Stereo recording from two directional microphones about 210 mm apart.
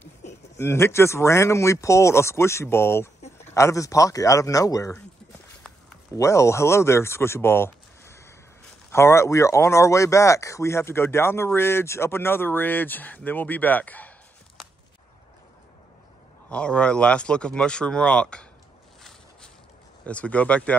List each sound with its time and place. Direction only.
0.0 s speech: 10° left (ahead or behind)
6.1 s speech: 15° left (ahead or behind)
16.4 s speech: 5° left (ahead or behind)
20.1 s speech: 5° left (ahead or behind)